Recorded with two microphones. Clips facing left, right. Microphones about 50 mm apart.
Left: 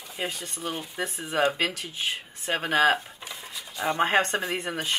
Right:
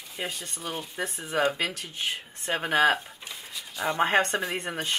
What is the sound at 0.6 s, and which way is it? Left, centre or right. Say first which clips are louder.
Speech: left 1 dB; centre.